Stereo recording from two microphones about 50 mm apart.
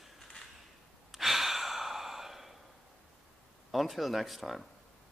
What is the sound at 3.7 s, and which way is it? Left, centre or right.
Speech, centre.